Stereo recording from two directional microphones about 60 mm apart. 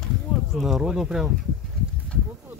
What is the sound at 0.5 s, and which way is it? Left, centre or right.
Speech, centre.